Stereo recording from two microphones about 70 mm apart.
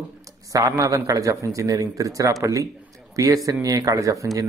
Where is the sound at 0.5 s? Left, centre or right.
Right.